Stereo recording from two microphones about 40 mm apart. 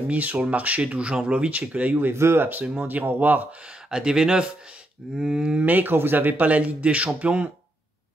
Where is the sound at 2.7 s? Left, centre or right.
Right.